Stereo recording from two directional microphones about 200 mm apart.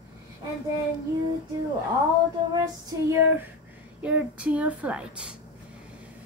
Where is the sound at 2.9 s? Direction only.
15° right (ahead or behind).